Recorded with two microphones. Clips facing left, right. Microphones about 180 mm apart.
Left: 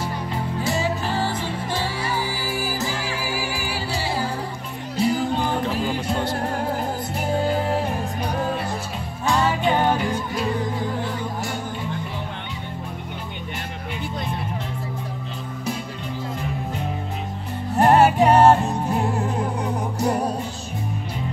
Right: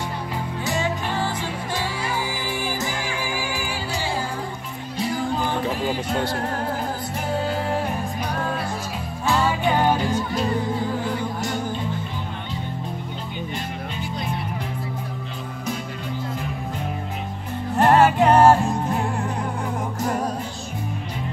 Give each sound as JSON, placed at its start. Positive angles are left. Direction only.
{"t": 0.8, "sound": "music", "side_deg": 35}
{"t": 2.4, "sound": "music", "side_deg": 5}
{"t": 9.7, "sound": "music", "side_deg": 0}
{"t": 17.7, "sound": "music", "side_deg": 15}
{"t": 18.3, "sound": "music", "side_deg": 0}
{"t": 19.0, "sound": "music", "side_deg": 20}